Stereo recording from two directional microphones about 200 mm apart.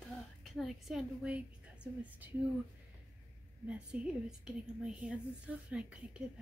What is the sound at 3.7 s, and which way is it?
A woman's voice, 5° right (ahead or behind).